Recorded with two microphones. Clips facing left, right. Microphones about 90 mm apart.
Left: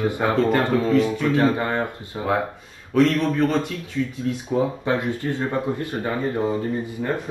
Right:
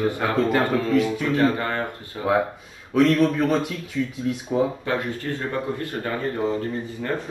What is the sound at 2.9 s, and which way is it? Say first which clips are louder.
Mantra: right 1 dB; 5° right (ahead or behind).